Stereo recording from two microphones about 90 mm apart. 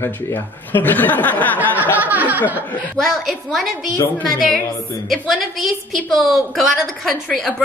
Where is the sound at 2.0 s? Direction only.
20° right (ahead or behind).